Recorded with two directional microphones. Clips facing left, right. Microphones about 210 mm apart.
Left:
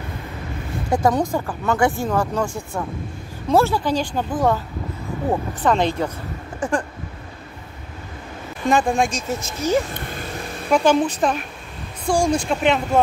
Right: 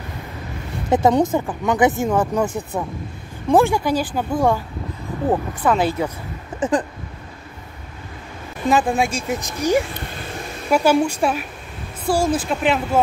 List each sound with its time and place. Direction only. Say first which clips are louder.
0.8 s a woman's voice: right 3 dB; 20° right (ahead or behind)
6.6 s speech: right 3 dB; 20° right (ahead or behind)
8.6 s speech: even; 5° right (ahead or behind)